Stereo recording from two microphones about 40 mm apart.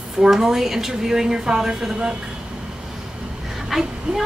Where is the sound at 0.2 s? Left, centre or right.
Centre.